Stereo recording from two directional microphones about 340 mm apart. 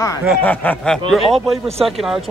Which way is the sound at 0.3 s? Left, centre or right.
Centre.